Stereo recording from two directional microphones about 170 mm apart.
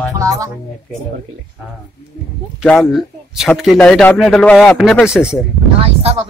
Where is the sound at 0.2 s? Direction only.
20° right (ahead or behind).